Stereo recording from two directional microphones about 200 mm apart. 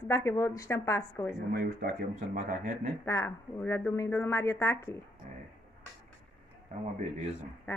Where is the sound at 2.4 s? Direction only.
40° right (ahead or behind).